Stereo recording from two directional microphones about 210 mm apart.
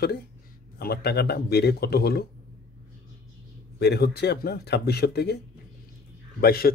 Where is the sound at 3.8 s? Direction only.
50° left (ahead or behind).